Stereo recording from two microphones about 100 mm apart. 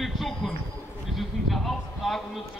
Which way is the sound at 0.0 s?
Centre (ahead or behind).